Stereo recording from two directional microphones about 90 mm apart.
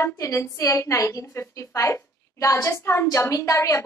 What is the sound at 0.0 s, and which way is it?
A woman's voice, 35° left (ahead or behind).